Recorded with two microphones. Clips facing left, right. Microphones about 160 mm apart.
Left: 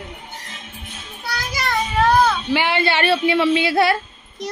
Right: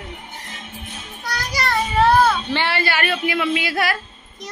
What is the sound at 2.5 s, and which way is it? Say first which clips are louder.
Speech: left 3 dB; 20° left (ahead or behind).